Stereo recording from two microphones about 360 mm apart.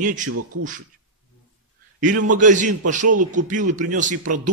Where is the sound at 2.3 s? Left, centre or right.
Right.